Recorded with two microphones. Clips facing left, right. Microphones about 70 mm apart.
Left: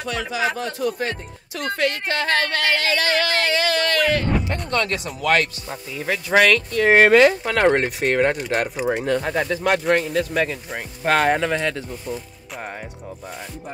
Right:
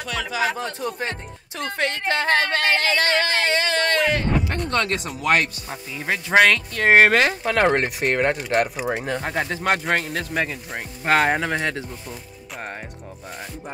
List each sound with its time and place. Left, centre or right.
0.6 s speech: right
5.0 s speech: right
6.7 s speech: right
7.4 s speech: centre
9.5 s speech: right
10.3 s speech: centre
11.5 s speech: right
12.1 s speech: centre